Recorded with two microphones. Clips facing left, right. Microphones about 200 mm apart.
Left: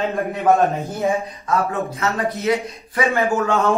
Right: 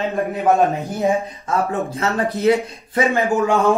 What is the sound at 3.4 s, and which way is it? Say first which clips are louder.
Speech: right 2 dB; 15° right (ahead or behind).